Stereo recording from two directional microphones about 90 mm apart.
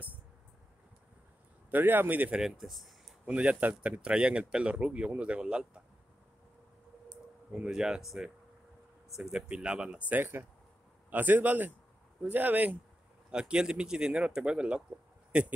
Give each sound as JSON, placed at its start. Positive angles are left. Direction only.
{"t": 1.7, "sound": "a man's voice", "side_deg": -20}
{"t": 2.4, "sound": "speech", "side_deg": 0}
{"t": 3.3, "sound": "speech", "side_deg": -15}
{"t": 7.5, "sound": "speech", "side_deg": -10}
{"t": 9.1, "sound": "a man's voice", "side_deg": -5}